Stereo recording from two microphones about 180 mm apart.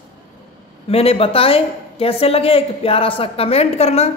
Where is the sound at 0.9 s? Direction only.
35° left (ahead or behind).